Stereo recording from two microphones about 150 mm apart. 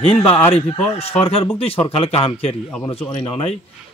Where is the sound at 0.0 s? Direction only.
40° left (ahead or behind).